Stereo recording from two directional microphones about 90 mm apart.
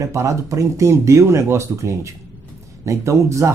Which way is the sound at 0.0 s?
35° right (ahead or behind).